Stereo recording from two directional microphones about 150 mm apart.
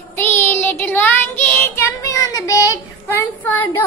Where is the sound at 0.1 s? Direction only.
15° left (ahead or behind).